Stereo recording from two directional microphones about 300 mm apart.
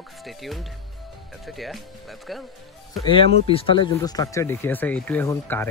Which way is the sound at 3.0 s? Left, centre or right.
Centre.